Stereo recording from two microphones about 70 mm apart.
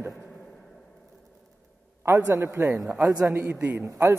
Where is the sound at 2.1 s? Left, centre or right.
Right.